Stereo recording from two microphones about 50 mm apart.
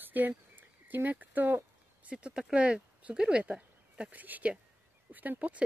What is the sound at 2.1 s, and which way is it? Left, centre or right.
Speech, centre.